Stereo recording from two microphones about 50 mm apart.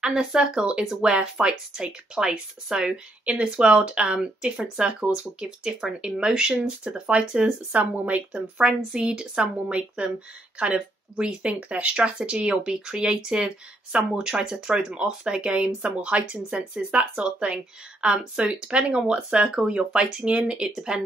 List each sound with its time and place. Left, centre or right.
0.0 s speech: centre
8.5 s speech: centre